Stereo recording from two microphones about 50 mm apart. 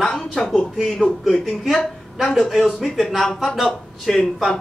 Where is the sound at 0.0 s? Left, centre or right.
Centre.